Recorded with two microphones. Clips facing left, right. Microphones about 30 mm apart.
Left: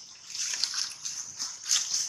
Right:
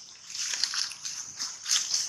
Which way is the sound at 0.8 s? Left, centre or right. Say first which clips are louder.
Right 1 dB; right.